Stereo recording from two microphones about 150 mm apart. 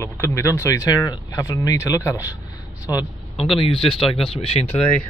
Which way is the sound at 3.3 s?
40° left (ahead or behind).